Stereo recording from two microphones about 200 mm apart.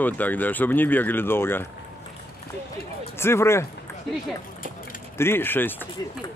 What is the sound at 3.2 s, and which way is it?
Speech, 15° left (ahead or behind).